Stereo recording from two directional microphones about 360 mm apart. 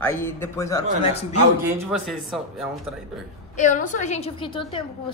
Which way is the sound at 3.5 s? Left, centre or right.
Left.